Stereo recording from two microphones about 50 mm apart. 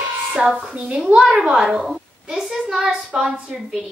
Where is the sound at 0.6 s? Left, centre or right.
Centre.